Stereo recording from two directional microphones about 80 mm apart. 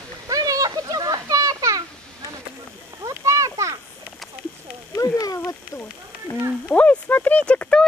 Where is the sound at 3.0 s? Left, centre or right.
Right.